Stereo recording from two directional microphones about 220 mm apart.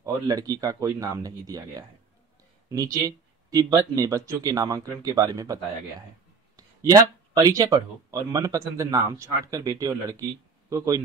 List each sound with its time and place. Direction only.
0.0 s speech: 15° right (ahead or behind)